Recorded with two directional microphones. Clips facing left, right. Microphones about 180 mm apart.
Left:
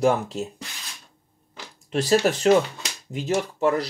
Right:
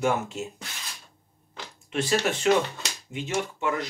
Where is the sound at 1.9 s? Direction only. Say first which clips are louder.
Left 5 dB; 40° left (ahead or behind).